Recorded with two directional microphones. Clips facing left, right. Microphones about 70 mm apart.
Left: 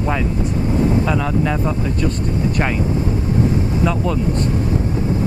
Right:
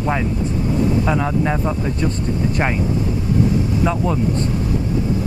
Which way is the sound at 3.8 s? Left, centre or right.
Right.